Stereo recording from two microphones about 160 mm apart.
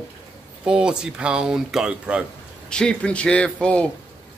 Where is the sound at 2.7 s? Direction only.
5° left (ahead or behind).